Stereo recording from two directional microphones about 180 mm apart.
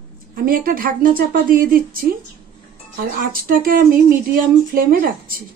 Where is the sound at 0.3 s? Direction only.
55° right (ahead or behind).